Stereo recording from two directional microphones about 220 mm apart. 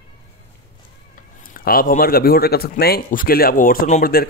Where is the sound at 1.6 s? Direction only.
40° left (ahead or behind).